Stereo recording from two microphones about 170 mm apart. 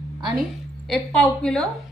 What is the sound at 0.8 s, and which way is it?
Speech, 5° left (ahead or behind).